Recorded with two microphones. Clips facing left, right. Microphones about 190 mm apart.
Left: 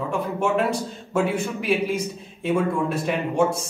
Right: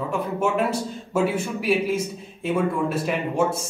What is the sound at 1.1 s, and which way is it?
A man's voice, 5° right (ahead or behind).